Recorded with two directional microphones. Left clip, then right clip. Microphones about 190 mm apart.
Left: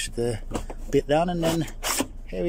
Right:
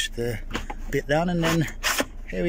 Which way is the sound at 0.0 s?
5° left (ahead or behind).